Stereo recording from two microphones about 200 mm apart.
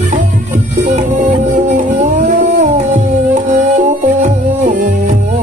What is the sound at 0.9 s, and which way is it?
Music, 40° right (ahead or behind).